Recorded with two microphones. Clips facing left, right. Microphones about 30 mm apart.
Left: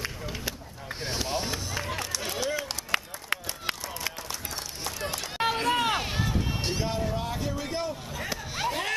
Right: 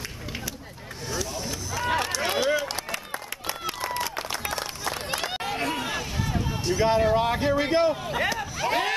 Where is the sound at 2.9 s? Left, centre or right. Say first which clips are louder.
Left 4 dB; left.